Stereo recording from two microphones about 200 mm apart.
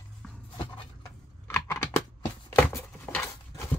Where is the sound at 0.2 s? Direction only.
5° left (ahead or behind).